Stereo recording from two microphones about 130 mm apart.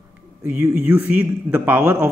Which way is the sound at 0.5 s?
15° right (ahead or behind).